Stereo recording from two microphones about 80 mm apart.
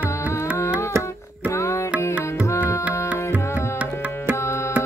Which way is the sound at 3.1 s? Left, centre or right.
Centre.